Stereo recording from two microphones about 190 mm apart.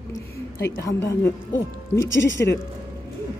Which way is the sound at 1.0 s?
15° left (ahead or behind).